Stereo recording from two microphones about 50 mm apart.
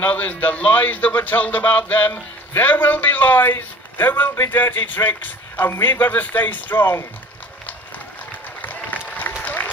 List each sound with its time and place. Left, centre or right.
0.0 s speech: left
8.5 s applause: left